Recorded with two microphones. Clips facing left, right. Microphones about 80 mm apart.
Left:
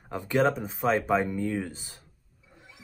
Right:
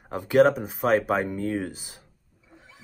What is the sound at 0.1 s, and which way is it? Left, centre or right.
Speech, centre.